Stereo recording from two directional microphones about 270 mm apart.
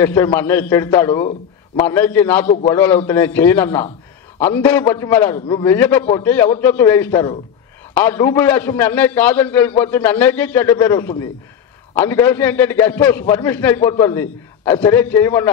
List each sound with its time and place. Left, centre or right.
0.0 s a man's voice: centre
2.4 s a man's voice: left
2.7 s a man's voice: centre